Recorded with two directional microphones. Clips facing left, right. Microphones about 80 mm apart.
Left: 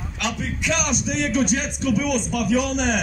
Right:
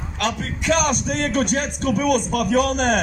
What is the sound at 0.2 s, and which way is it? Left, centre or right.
A man's voice, right.